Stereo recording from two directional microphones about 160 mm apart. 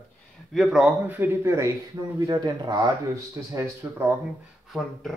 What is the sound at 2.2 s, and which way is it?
Speech, 25° right (ahead or behind).